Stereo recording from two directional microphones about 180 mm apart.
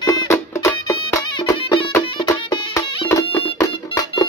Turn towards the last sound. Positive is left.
turn(degrees=20)  # may be behind; listen again after turning